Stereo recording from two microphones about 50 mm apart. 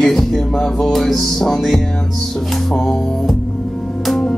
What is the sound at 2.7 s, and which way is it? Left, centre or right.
Music, centre.